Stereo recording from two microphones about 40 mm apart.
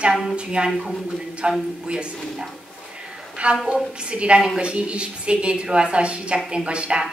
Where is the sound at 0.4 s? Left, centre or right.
Right.